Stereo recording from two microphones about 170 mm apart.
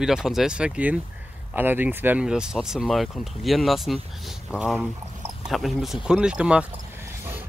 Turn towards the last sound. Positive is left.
turn(degrees=-5)  # may be behind; listen again after turning